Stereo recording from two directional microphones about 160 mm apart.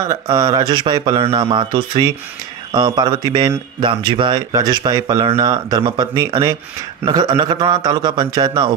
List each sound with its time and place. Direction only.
0.1 s speech: 25° right (ahead or behind)